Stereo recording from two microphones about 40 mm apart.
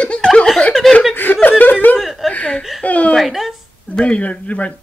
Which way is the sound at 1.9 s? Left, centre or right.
Centre.